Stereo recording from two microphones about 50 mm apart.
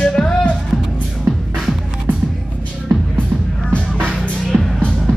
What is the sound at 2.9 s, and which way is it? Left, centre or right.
Music, right.